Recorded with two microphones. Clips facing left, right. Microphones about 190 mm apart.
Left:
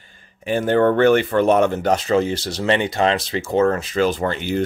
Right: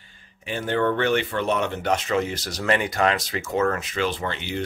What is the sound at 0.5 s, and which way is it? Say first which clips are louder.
Speech: left 7 dB; 45° left (ahead or behind).